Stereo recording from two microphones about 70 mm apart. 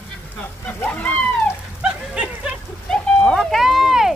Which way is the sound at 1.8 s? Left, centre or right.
Centre.